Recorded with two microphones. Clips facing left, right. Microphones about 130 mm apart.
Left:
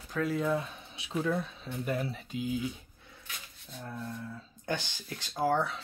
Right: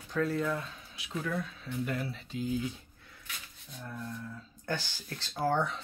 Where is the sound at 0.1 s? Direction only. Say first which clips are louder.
Left 1 dB; 10° left (ahead or behind).